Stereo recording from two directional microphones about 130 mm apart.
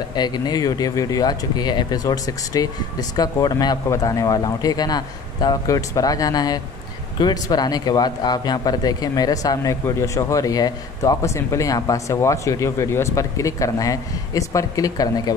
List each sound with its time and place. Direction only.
0.1 s speech: 35° left (ahead or behind)